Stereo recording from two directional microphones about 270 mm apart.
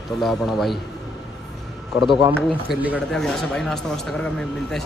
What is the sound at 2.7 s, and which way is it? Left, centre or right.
Speech, centre.